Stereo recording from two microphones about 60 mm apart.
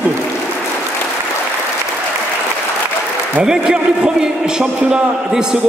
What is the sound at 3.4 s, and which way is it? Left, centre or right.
A man's voice, centre.